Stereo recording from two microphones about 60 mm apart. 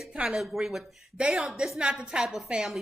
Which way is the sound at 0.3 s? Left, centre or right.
Centre.